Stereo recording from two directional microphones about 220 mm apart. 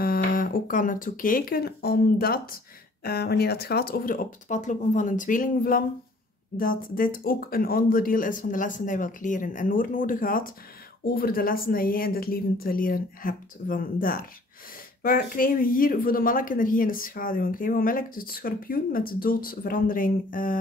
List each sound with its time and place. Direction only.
0.0 s speech: 40° left (ahead or behind)